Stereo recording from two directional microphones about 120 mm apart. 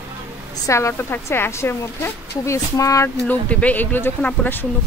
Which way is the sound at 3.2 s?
15° left (ahead or behind).